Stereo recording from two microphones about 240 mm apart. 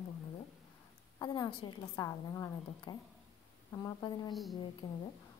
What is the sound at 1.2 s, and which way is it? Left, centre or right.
A woman's voice, centre.